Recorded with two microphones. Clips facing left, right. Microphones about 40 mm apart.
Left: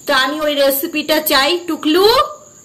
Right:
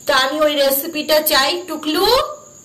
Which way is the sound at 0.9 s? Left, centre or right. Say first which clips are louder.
Left 1 dB; left.